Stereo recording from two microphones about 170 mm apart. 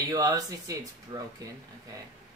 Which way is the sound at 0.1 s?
20° right (ahead or behind).